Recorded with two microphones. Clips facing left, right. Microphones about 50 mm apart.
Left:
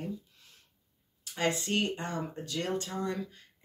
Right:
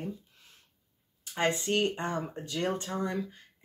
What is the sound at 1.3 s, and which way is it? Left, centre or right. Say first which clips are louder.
Speech: right 2 dB; right.